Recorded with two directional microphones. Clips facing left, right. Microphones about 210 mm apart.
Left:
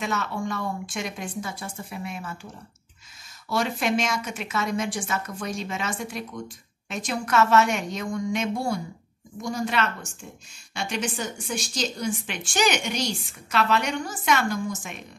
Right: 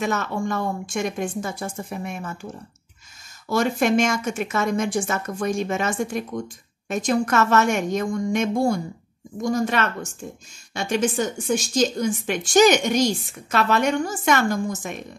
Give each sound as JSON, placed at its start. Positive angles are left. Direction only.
{"t": 0.0, "sound": "a woman's voice", "side_deg": -50}